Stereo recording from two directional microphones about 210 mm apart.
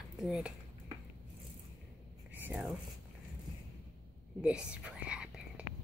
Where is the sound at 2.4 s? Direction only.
5° right (ahead or behind).